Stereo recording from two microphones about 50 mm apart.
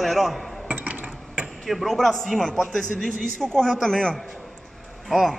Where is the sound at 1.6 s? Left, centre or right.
Centre.